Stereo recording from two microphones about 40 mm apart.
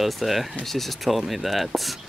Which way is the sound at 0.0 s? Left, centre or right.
Centre.